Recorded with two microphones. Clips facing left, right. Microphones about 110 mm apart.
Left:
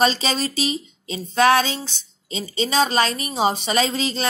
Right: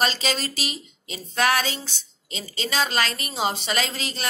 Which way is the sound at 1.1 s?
25° left (ahead or behind).